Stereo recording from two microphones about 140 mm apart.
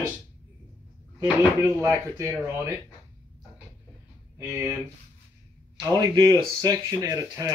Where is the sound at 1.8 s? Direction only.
20° right (ahead or behind).